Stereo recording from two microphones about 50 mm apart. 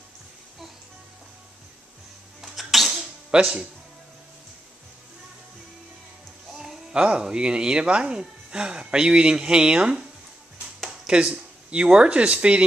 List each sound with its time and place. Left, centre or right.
2.4 s sneeze: centre
3.0 s music: centre
6.5 s speech: centre